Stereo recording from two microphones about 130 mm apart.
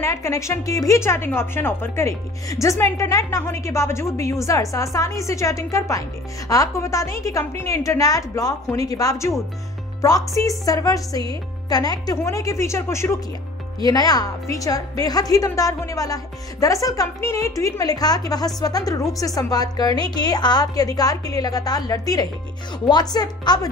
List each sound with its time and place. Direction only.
0.0 s a woman's voice: 20° left (ahead or behind)